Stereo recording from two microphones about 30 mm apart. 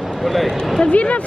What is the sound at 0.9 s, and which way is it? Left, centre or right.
Speech, left.